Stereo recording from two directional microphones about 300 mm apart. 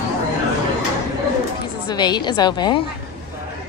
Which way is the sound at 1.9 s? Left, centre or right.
Centre.